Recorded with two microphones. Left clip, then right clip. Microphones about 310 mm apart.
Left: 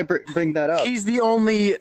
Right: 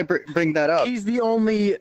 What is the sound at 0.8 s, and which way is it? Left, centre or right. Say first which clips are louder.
Speech: left 1 dB; centre.